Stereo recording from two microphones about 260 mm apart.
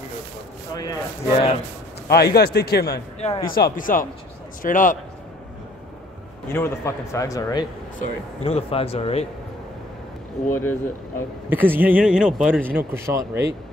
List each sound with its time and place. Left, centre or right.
0.7 s speech: centre
2.0 s a man's voice: left
6.5 s speech: centre
8.5 s speech: left
10.5 s speech: centre
11.4 s a man's voice: centre
12.7 s speech: centre